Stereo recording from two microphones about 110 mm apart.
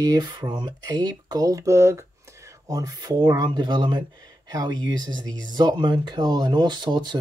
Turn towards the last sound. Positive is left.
turn(degrees=-40)  # may be behind; listen again after turning